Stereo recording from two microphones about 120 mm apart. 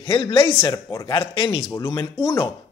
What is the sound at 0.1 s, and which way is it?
Speech, 45° left (ahead or behind).